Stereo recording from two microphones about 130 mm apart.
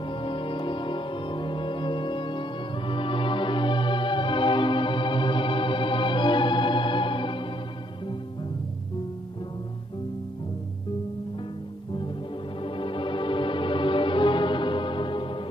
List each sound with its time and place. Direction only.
0.0 s music: 40° left (ahead or behind)
12.6 s music: 40° left (ahead or behind)